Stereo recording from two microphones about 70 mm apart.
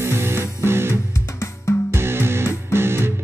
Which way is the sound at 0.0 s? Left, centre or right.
Right.